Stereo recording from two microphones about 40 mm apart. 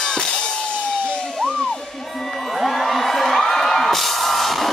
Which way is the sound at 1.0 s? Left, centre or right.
Left.